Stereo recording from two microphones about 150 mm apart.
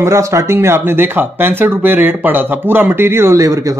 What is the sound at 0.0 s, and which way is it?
Speech, 20° right (ahead or behind).